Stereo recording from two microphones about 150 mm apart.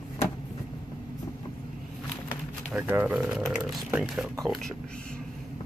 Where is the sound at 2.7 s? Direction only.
10° right (ahead or behind).